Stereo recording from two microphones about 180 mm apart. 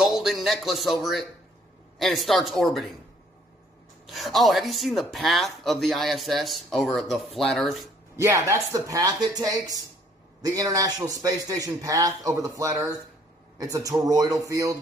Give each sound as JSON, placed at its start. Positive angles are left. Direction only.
{"t": 0.0, "sound": "a sound", "side_deg": 0}
{"t": 2.0, "sound": "speech", "side_deg": 0}
{"t": 4.0, "sound": "speech", "side_deg": 0}
{"t": 8.2, "sound": "a man's voice", "side_deg": -15}